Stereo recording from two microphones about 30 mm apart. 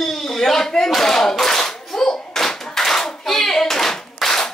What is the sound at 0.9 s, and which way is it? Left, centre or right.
Speech, centre.